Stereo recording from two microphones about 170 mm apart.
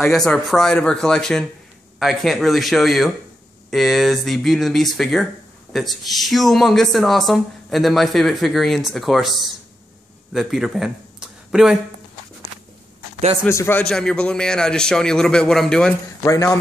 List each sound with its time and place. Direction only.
0.0 s speech: centre (ahead or behind)
13.4 s speech: 15° left (ahead or behind)
16.3 s a man's voice: 20° left (ahead or behind)